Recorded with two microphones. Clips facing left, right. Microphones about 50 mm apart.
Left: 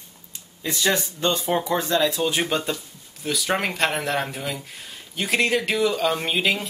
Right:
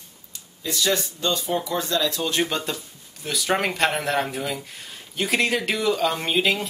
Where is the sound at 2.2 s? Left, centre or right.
Centre.